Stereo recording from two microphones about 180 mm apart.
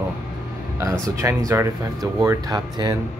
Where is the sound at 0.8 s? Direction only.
15° right (ahead or behind).